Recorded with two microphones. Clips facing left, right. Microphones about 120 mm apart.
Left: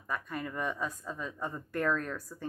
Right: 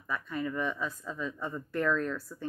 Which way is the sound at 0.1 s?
50° left (ahead or behind).